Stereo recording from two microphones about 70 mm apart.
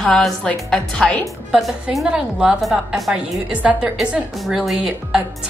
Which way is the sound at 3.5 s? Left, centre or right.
Centre.